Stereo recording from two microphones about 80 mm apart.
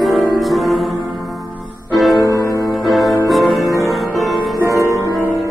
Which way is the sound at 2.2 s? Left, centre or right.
Left.